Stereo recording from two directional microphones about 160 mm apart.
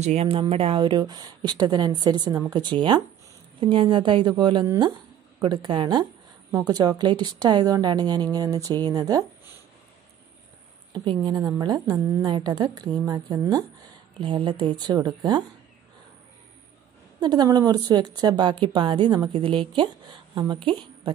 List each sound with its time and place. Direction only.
0.0 s a woman's voice: 40° right (ahead or behind); by 9.2 s 25° right (ahead or behind)
10.9 s a woman's voice: 30° right (ahead or behind)
17.2 s a woman's voice: 25° right (ahead or behind)